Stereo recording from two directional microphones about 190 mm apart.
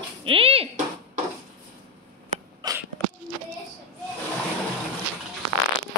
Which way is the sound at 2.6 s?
20° right (ahead or behind).